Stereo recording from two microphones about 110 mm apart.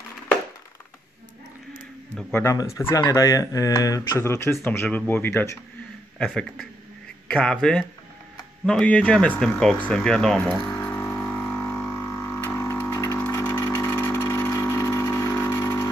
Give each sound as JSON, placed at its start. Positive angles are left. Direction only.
{"t": 2.5, "sound": "speech", "side_deg": 25}
{"t": 6.1, "sound": "speech", "side_deg": 10}
{"t": 10.5, "sound": "didgeridoo", "side_deg": 10}
{"t": 12.4, "sound": "a sound", "side_deg": 25}
{"t": 13.2, "sound": "vehicle", "side_deg": 15}